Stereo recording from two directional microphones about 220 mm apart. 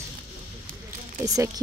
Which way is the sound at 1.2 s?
15° right (ahead or behind).